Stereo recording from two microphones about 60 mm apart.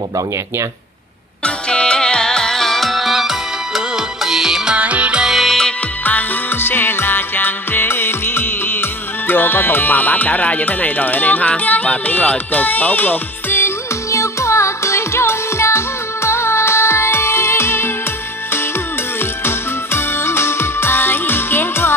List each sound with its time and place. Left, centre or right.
1.4 s music: centre
4.7 s music: right
5.2 s music: centre
6.0 s music: left
14.1 s music: left
19.4 s music: left